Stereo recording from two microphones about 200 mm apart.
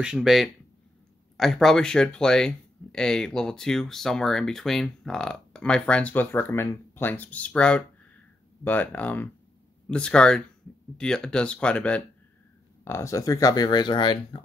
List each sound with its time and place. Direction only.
0.0 s speech: 5° right (ahead or behind); by 14.4 s 25° left (ahead or behind)